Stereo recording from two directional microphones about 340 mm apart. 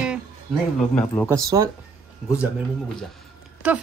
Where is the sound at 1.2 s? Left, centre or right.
Centre.